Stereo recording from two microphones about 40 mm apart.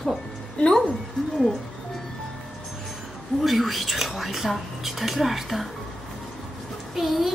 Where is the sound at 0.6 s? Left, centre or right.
Centre.